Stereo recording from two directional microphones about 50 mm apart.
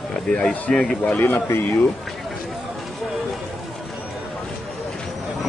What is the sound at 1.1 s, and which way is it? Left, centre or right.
Speech, left.